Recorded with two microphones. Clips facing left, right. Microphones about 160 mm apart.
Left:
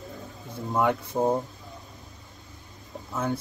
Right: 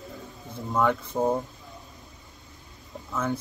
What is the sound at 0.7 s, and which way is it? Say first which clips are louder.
Speech: even; 15° left (ahead or behind).